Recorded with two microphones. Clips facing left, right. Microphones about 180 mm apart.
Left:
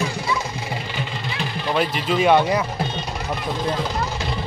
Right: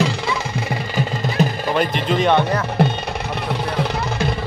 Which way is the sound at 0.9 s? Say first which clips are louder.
Right 8 dB; 45° right (ahead or behind).